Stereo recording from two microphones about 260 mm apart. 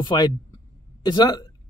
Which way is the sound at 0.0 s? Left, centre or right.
Centre.